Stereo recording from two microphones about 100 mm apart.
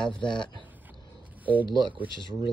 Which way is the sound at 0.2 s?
50° left (ahead or behind).